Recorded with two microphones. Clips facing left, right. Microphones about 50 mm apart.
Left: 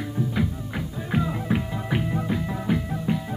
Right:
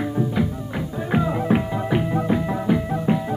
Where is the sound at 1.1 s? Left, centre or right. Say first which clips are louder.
Right 5 dB; centre.